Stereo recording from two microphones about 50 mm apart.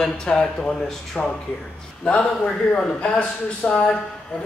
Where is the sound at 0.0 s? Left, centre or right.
Centre.